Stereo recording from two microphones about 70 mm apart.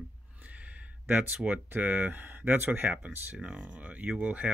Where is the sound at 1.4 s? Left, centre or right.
Right.